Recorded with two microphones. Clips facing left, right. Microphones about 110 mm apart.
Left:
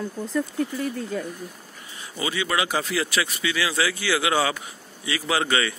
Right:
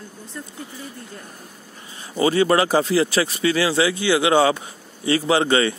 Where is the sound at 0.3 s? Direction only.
90° left.